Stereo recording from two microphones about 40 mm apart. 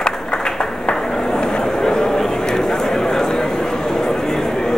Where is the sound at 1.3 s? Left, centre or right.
Centre.